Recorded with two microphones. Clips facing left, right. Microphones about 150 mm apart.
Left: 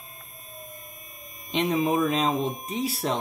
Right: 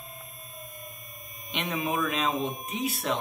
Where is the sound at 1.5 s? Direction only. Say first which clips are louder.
Left 6 dB; 30° left (ahead or behind).